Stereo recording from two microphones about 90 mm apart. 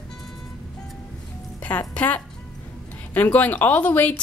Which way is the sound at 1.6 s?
15° left (ahead or behind).